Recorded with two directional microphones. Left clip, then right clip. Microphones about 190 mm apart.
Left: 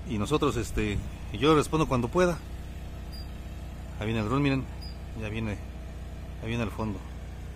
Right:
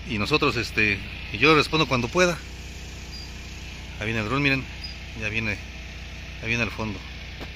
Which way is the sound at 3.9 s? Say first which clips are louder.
Right 3 dB; 5° left (ahead or behind).